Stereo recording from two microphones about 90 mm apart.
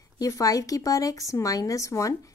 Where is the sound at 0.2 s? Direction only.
40° left (ahead or behind).